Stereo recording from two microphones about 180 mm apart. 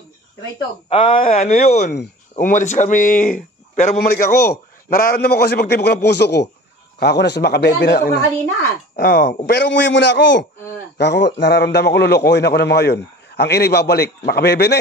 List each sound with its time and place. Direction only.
0.6 s a man's voice: 30° left (ahead or behind); by 8.2 s 65° left (ahead or behind)
8.9 s a man's voice: 55° left (ahead or behind)
9.5 s a man's voice: 75° left (ahead or behind)